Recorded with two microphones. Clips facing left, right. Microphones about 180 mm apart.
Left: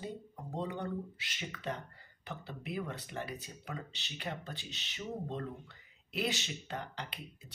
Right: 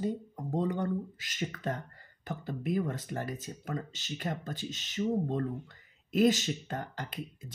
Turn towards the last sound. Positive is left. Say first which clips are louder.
# right 5 dB
turn(degrees=-45)  # may be behind; listen again after turning